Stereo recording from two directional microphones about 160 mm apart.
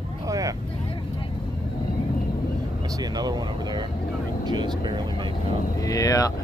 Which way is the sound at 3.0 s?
25° right (ahead or behind).